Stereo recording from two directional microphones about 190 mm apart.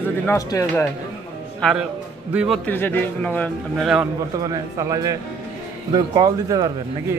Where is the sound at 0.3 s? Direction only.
15° left (ahead or behind).